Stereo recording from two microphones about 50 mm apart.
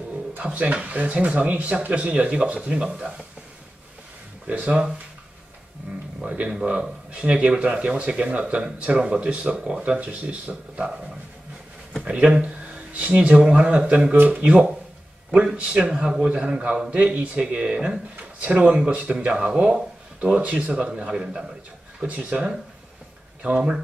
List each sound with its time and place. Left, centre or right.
0.4 s speech: right
4.5 s speech: right
6.2 s speech: right
9.9 s speech: right
12.0 s a man's voice: right
16.9 s a man's voice: right